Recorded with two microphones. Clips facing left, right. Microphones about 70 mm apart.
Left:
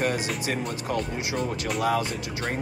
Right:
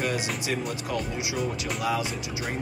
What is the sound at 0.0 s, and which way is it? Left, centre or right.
Speech, left.